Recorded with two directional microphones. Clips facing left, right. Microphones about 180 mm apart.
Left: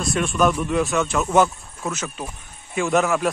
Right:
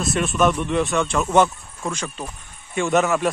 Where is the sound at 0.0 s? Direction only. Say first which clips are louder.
Even; centre (ahead or behind).